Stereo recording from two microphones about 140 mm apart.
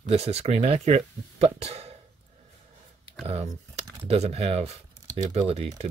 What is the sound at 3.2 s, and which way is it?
Speech, 45° right (ahead or behind).